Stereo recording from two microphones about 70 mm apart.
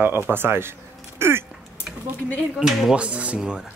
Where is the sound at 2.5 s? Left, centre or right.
Centre.